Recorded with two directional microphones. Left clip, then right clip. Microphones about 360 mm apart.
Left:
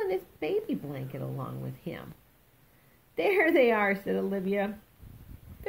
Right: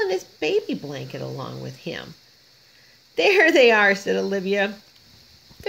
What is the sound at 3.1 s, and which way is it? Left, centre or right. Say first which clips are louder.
Speech: right 8 dB; right.